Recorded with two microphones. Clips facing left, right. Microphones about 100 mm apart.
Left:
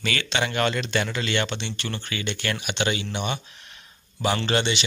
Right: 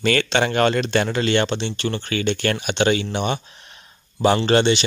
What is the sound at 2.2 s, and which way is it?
Speech, 45° right (ahead or behind).